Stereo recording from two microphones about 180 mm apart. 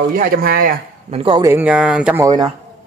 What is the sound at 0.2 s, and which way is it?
Speech, 55° right (ahead or behind).